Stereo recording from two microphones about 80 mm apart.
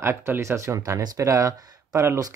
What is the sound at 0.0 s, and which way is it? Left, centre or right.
Speech, right.